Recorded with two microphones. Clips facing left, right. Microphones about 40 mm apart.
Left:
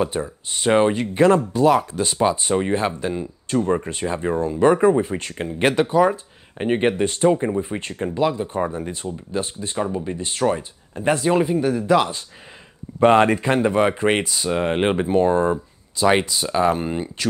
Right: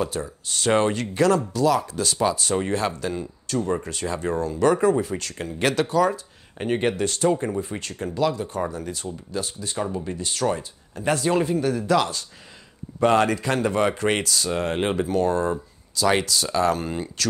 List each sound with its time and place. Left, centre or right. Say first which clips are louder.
0.0 s speech: left 4 dB; left
1.1 s speech: left 4 dB; left
7.8 s speech: left 2 dB; left
9.8 s speech: left 3 dB; centre